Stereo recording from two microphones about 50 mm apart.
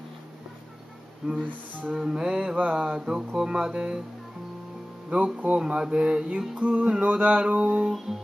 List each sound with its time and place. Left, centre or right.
1.4 s music: right
2.0 s music: centre
2.5 s music: right
2.8 s music: centre
5.1 s music: right